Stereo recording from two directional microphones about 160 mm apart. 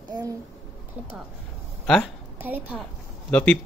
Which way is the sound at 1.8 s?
Centre (ahead or behind).